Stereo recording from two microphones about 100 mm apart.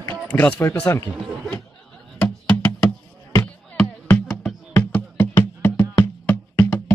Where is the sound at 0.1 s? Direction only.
15° left (ahead or behind).